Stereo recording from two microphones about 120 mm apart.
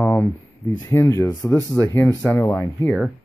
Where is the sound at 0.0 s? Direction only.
15° left (ahead or behind).